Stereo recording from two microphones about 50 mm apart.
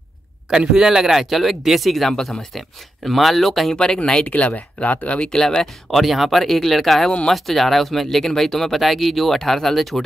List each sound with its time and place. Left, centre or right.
0.7 s speech: centre
3.7 s speech: centre
4.3 s speech: left
5.3 s speech: centre